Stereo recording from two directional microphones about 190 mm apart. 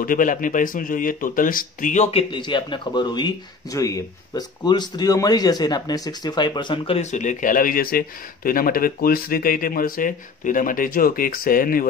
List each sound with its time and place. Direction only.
0.0 s speech: 45° left (ahead or behind)